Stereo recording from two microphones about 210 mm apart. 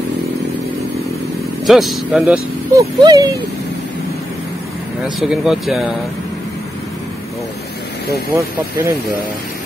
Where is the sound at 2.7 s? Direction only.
20° right (ahead or behind).